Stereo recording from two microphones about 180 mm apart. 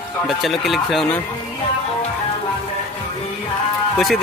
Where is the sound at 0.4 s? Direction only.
Centre (ahead or behind).